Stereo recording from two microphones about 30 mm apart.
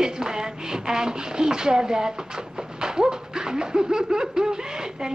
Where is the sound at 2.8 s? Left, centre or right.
Right.